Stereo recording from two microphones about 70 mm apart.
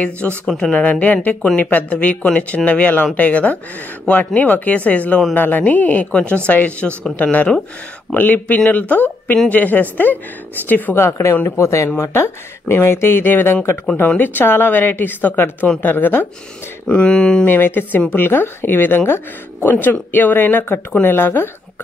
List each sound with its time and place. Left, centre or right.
0.5 s speech: centre
0.7 s a woman's voice: centre
11.0 s a woman's voice: left
16.8 s speech: centre
17.5 s a woman's voice: left